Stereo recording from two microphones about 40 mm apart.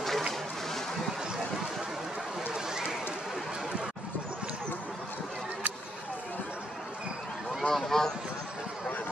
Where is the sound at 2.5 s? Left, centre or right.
Centre.